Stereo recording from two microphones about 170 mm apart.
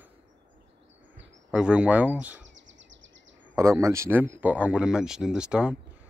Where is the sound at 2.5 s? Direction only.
90° right.